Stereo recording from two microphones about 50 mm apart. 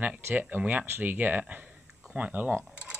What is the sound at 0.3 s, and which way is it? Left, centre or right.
Speech, right.